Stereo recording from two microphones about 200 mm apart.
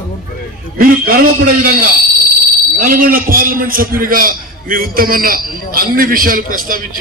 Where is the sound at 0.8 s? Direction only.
45° right (ahead or behind).